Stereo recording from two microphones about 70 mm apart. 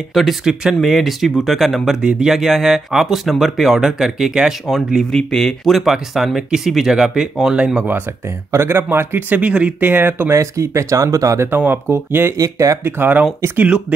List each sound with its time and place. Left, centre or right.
0.1 s speech: centre
8.5 s speech: right
9.4 s speech: centre
10.3 s speech: right
11.5 s speech: right
12.4 s speech: right
12.8 s speech: right
13.6 s speech: centre